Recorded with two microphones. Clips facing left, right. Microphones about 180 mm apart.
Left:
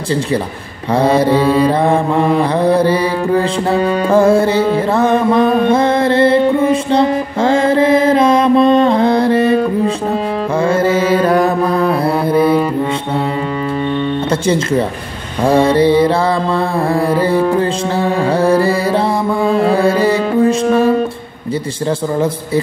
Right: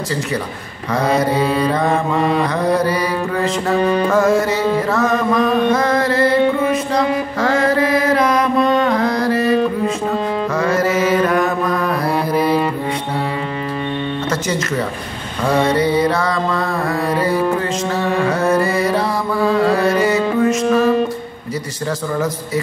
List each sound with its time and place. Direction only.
0.9 s mantra: 30° left (ahead or behind)
10.6 s music: 30° left (ahead or behind)
14.3 s speech: 30° left (ahead or behind)
15.4 s mantra: 30° left (ahead or behind)